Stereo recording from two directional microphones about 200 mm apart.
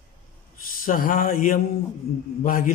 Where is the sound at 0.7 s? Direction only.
45° left (ahead or behind).